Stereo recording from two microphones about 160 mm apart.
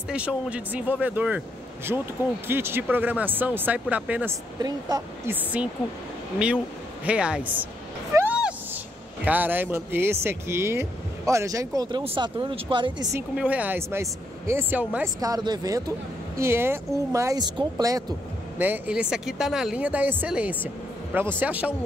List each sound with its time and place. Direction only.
0.1 s speech: 5° right (ahead or behind)
2.4 s speech: 15° right (ahead or behind)
4.6 s speech: 25° right (ahead or behind)
5.3 s speech: 10° right (ahead or behind)
7.1 s speech: 5° right (ahead or behind)
8.1 s a sound: 10° right (ahead or behind)
9.2 s speech: 10° right (ahead or behind)
12.0 s speech: 35° right (ahead or behind)
13.4 s speech: 10° right (ahead or behind)
15.1 s speech: 25° right (ahead or behind)
18.6 s speech: 10° right (ahead or behind)